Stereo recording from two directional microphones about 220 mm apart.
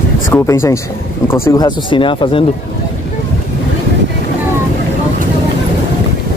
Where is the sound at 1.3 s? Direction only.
15° left (ahead or behind).